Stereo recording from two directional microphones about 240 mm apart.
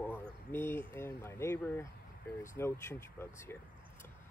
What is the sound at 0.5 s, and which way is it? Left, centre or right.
Speech, centre.